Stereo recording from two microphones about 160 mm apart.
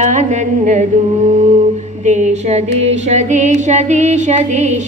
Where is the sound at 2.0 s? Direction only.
45° right (ahead or behind).